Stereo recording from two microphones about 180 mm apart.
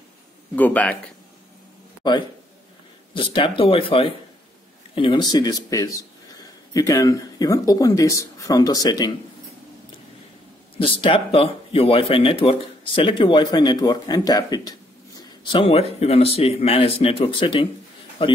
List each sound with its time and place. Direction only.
0.6 s speech: 10° left (ahead or behind)
3.2 s speech: 30° left (ahead or behind)
10.8 s speech: 30° left (ahead or behind)
15.5 s speech: 30° left (ahead or behind)